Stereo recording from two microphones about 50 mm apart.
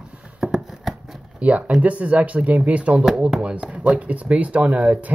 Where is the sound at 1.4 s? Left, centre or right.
Right.